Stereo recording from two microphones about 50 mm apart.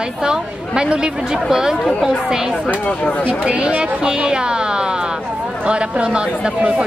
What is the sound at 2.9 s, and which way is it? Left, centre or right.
Speech, left.